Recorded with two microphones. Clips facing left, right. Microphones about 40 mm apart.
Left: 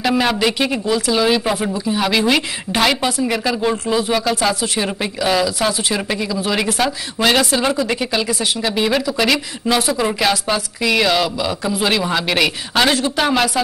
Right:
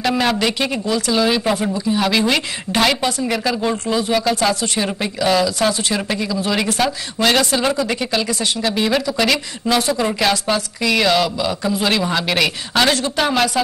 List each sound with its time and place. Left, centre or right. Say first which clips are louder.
0.0 s speech: left 1 dB; centre